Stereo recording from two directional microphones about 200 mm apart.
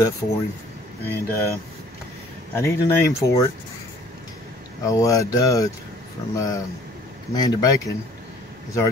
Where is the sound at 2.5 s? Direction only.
15° left (ahead or behind).